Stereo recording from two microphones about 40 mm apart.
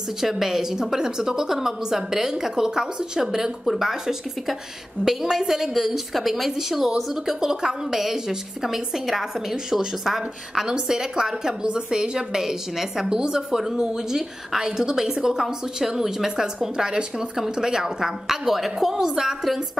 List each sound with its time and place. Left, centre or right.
0.2 s a woman's voice: centre
7.2 s a woman's voice: centre